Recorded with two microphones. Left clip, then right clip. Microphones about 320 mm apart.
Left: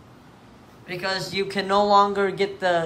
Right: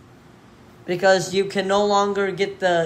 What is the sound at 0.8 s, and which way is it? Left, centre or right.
A man's voice, centre.